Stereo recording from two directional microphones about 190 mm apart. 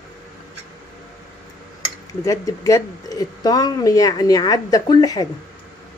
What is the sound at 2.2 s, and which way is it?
Speech, 15° left (ahead or behind).